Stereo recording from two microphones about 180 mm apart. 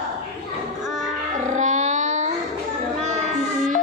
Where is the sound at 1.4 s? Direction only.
45° right (ahead or behind).